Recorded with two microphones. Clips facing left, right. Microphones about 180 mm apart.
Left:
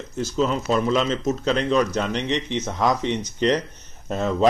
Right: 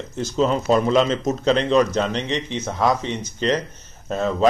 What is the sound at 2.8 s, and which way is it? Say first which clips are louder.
Speech: right 1 dB; 15° left (ahead or behind).